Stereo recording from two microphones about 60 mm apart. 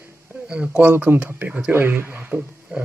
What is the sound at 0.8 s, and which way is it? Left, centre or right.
Speech, right.